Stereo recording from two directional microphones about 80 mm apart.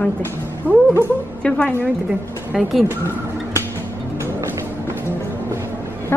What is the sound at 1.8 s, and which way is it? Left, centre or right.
Speech, right.